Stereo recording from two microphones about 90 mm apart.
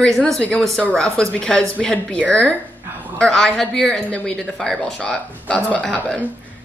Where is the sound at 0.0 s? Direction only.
5° left (ahead or behind).